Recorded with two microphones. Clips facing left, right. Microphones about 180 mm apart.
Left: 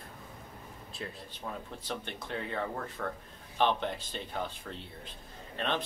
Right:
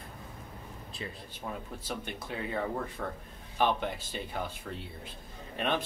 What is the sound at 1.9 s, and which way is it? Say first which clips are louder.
Speech: even; 10° right (ahead or behind).